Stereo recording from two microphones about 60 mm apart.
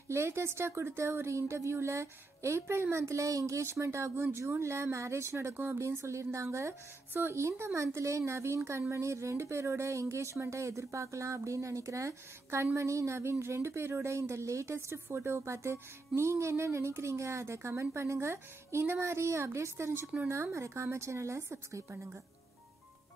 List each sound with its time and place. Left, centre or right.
0.1 s speech: right